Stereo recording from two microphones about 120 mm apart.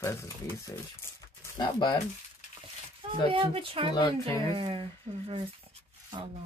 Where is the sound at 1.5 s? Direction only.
40° left (ahead or behind).